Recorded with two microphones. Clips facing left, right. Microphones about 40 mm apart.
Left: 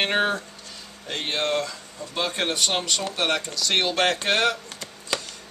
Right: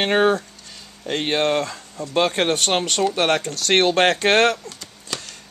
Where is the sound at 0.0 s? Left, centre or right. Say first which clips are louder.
Right 5 dB; centre.